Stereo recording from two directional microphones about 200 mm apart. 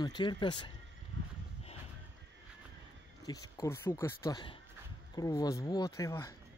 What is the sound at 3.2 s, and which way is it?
Speech, 15° left (ahead or behind).